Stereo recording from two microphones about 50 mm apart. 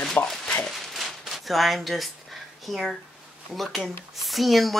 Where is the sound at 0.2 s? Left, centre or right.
Left.